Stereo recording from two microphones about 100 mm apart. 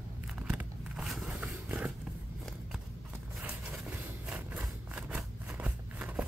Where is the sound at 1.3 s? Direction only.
15° right (ahead or behind).